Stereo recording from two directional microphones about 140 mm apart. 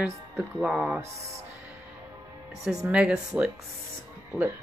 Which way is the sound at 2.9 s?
5° right (ahead or behind).